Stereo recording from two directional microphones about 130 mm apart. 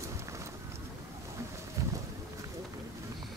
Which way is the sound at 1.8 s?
25° right (ahead or behind).